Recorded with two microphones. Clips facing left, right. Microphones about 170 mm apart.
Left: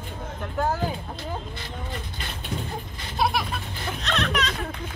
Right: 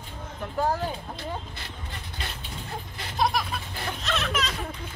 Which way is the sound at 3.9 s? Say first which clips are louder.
Left 3 dB; centre (ahead or behind).